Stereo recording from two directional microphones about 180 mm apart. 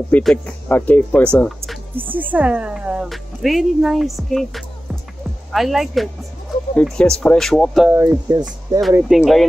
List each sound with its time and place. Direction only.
0.1 s speech: 5° left (ahead or behind)
2.0 s speech: 10° right (ahead or behind)
7.9 s speech: 15° right (ahead or behind)
9.1 s speech: centre (ahead or behind)